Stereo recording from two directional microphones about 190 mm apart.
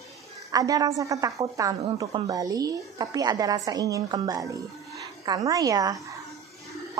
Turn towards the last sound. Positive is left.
turn(degrees=-20)  # may be behind; listen again after turning